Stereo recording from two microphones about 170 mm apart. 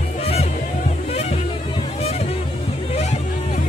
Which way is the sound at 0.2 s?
35° left (ahead or behind).